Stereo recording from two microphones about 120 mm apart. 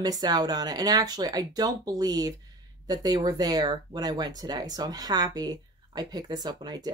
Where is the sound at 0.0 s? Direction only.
30° right (ahead or behind).